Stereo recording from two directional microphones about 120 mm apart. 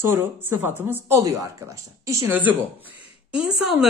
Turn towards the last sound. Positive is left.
turn(degrees=-5)  # may be behind; listen again after turning